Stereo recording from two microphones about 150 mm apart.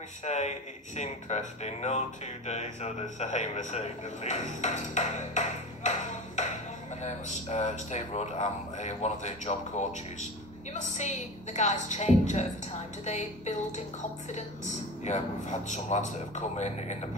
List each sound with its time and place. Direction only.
0.2 s speech: 50° left (ahead or behind)
15.0 s speech: 50° left (ahead or behind)